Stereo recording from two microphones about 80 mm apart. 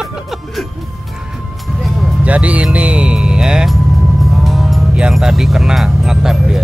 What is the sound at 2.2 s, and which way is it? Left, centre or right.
Speech, centre.